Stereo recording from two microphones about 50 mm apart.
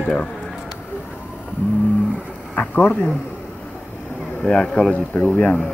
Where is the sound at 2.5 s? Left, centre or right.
Left.